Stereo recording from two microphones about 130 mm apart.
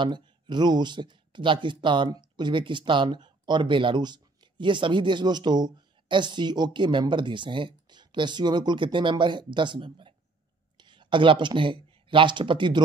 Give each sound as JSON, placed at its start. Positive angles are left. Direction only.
{"t": 0.0, "sound": "speech", "side_deg": -35}